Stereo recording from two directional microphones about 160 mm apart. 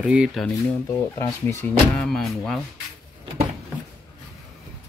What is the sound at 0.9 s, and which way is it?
Speech, 15° left (ahead or behind).